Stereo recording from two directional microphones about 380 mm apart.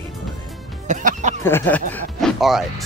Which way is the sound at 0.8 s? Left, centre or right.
Centre.